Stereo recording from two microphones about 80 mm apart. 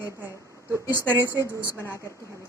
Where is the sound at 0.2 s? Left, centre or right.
Right.